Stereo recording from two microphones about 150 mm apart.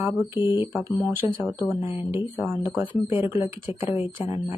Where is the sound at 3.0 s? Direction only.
35° left (ahead or behind).